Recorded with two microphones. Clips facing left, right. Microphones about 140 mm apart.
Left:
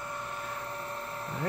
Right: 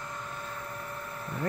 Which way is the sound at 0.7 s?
30° left (ahead or behind).